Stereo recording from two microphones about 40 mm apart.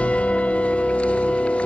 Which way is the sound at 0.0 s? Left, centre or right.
Left.